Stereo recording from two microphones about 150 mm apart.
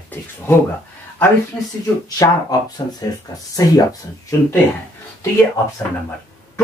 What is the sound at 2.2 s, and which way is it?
Speech, 25° left (ahead or behind).